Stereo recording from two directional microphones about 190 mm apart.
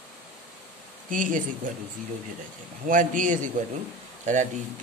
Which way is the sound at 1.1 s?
45° right (ahead or behind).